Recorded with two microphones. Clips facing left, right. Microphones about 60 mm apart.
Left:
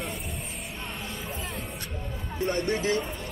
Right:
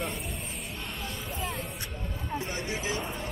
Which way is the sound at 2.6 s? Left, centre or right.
Centre.